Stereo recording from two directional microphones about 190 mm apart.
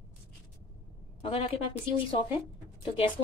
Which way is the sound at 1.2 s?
25° left (ahead or behind).